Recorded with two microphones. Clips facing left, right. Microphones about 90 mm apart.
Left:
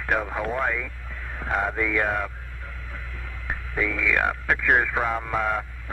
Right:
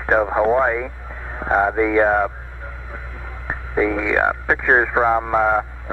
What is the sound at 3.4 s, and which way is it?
Speech, 25° right (ahead or behind).